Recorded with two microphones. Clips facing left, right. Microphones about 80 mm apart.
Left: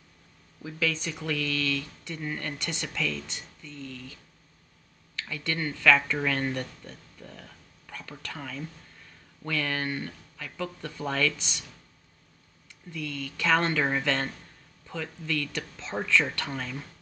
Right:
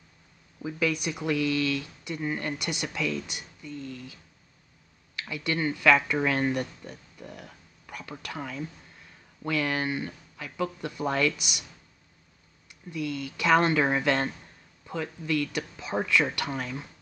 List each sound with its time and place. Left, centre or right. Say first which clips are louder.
0.6 s speech: right 3 dB; centre
12.6 s speech: right 5 dB; centre